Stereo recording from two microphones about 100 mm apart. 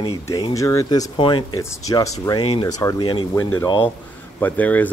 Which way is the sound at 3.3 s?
30° left (ahead or behind).